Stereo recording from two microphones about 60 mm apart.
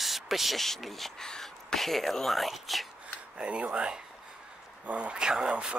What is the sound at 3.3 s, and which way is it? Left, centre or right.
Speech, centre.